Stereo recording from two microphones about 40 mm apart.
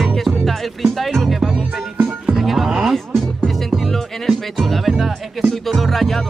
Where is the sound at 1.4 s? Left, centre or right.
Centre.